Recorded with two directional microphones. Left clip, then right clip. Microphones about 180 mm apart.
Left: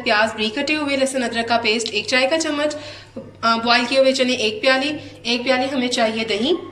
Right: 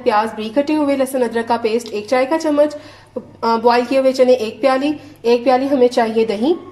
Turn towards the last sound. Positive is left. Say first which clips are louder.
# right 4 dB
turn(degrees=-50)  # may be behind; listen again after turning